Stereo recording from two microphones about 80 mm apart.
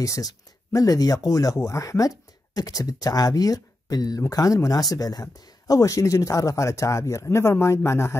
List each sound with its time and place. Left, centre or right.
0.0 s speech: left